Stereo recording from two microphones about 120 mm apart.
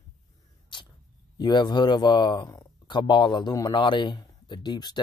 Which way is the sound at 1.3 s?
35° left (ahead or behind).